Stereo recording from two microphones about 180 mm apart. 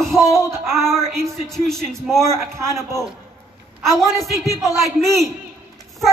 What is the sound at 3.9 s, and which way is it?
Speech, centre (ahead or behind).